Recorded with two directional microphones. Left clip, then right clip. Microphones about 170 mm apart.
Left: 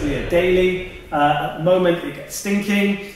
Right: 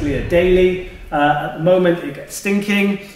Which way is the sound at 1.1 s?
20° right (ahead or behind).